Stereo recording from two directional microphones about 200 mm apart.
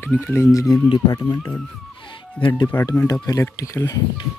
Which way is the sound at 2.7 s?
10° left (ahead or behind).